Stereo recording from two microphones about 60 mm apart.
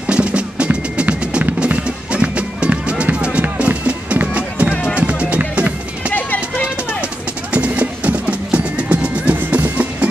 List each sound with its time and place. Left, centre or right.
0.0 s music: centre
6.1 s music: left
7.5 s music: right